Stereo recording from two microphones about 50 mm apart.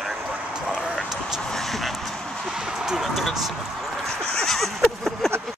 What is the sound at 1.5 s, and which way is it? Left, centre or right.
Speech, centre.